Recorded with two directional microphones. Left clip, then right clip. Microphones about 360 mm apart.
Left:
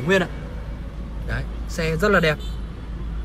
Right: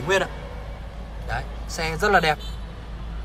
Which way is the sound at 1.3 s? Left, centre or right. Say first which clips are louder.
Right 1 dB; centre.